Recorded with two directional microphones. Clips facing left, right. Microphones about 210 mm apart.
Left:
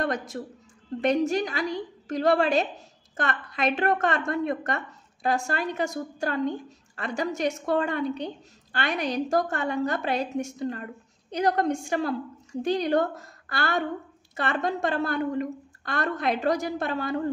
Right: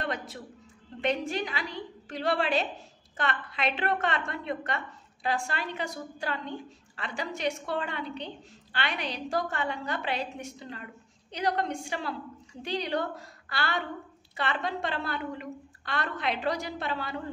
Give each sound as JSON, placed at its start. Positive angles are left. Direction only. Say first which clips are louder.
{"t": 0.0, "sound": "a woman's voice", "louder": "left 6 dB", "side_deg": 45}